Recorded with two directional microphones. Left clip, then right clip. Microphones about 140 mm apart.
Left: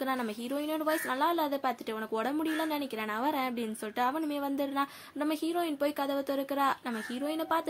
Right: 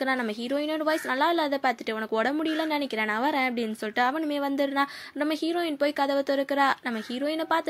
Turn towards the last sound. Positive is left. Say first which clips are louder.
# right 5 dB
turn(degrees=-25)  # may be behind; listen again after turning